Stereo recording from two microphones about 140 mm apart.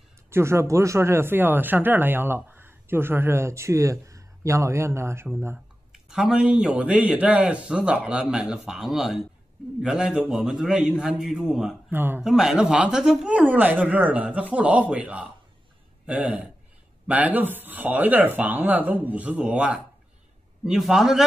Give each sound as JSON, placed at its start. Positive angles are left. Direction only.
{"t": 0.3, "sound": "speech", "side_deg": -20}
{"t": 5.9, "sound": "a man's voice", "side_deg": -5}
{"t": 11.9, "sound": "speech", "side_deg": -15}
{"t": 12.2, "sound": "a man's voice", "side_deg": -5}